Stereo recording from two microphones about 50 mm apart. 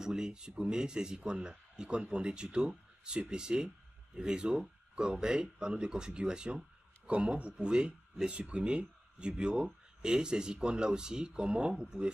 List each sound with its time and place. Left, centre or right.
0.0 s speech: centre